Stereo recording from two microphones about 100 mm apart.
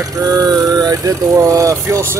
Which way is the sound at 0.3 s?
35° right (ahead or behind).